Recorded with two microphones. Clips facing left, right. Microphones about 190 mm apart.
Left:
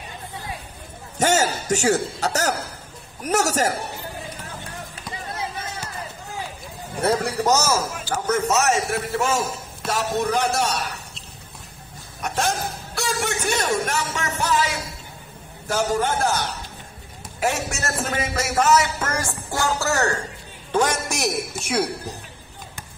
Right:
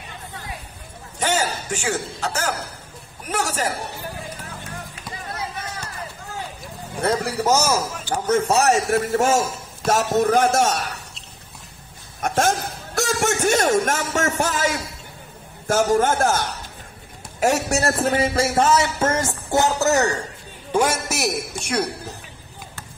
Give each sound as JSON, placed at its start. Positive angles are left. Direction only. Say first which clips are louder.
{"t": 1.2, "sound": "a man's voice", "louder": "left 3 dB", "side_deg": 45}
{"t": 7.0, "sound": "a man's voice", "louder": "left 1 dB", "side_deg": 5}
{"t": 7.3, "sound": "a man's voice", "louder": "right 1 dB", "side_deg": -10}
{"t": 8.3, "sound": "a man's voice", "louder": "right 3 dB", "side_deg": -35}
{"t": 12.2, "sound": "a man's voice", "louder": "right 4 dB", "side_deg": -50}